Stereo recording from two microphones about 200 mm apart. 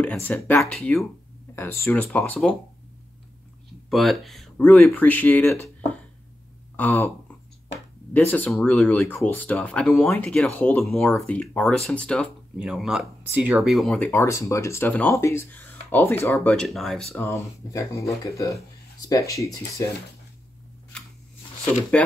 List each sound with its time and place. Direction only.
0.0 s speech: 10° left (ahead or behind)
3.9 s speech: centre (ahead or behind)
6.8 s speech: 10° left (ahead or behind)
17.3 s speech: 15° left (ahead or behind)
20.9 s a sound: 5° left (ahead or behind)